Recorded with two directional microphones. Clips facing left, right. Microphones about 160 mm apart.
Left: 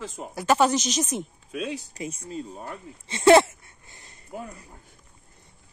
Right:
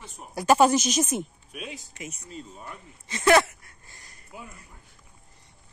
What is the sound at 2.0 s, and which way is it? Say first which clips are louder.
Speech: left 6 dB; 30° left (ahead or behind).